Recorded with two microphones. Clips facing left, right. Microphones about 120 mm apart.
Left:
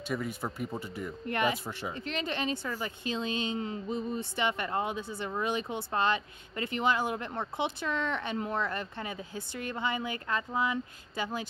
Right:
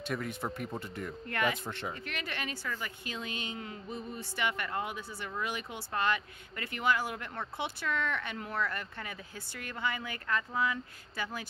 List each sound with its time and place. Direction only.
0.1 s speech: 5° left (ahead or behind)
2.0 s a woman's voice: 25° left (ahead or behind)